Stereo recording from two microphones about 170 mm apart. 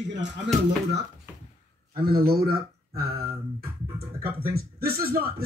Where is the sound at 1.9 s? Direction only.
65° right (ahead or behind).